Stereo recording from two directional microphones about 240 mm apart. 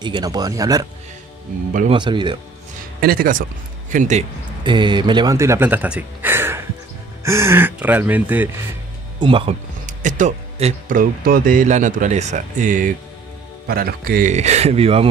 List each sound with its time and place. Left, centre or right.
0.0 s speech: centre
1.9 s a man's voice: centre
3.0 s speech: right
4.6 s speech: centre
9.2 s a man's voice: right